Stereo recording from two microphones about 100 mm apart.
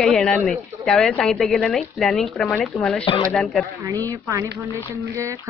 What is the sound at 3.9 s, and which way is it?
Speech, 35° right (ahead or behind).